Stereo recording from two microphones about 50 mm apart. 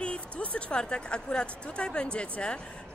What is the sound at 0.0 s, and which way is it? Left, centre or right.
Speech, left.